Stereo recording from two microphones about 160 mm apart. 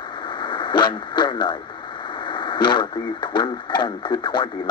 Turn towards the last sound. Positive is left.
turn(degrees=30)  # may be behind; listen again after turning